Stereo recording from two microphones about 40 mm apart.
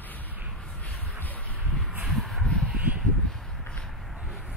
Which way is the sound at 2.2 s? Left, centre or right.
Centre.